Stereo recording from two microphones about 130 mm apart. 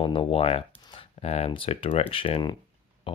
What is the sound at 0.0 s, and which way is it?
Speech, 40° left (ahead or behind).